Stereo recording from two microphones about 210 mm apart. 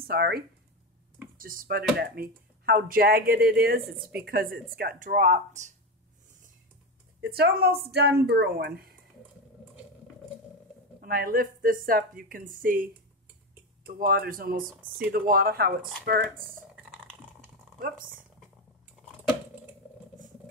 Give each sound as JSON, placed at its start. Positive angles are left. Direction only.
{"t": 0.0, "sound": "speech", "side_deg": -45}
{"t": 1.4, "sound": "a woman's voice", "side_deg": -40}
{"t": 7.2, "sound": "speech", "side_deg": -50}
{"t": 11.0, "sound": "speech", "side_deg": -45}
{"t": 14.8, "sound": "speech", "side_deg": -10}
{"t": 15.0, "sound": "speech", "side_deg": -45}
{"t": 16.7, "sound": "typing", "side_deg": 0}
{"t": 17.7, "sound": "speech", "side_deg": -45}